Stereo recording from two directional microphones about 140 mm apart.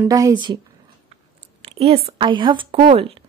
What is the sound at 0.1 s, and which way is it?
Speech, 30° right (ahead or behind).